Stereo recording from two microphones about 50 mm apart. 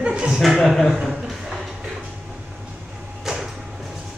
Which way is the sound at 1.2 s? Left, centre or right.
Centre.